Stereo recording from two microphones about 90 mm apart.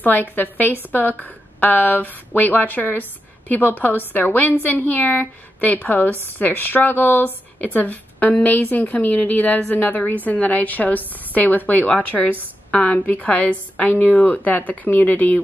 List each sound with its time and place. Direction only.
0.0 s a woman's voice: 20° left (ahead or behind)